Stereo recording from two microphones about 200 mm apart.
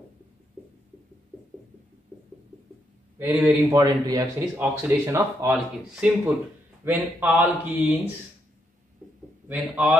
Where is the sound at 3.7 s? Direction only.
20° right (ahead or behind).